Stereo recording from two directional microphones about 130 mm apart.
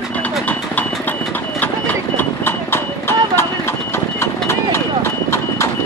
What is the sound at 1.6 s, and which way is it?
Horse, 15° left (ahead or behind).